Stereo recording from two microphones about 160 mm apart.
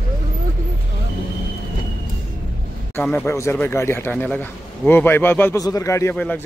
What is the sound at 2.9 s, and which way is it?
Speech, 10° left (ahead or behind).